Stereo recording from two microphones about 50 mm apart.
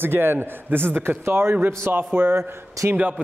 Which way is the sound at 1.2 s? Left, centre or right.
Right.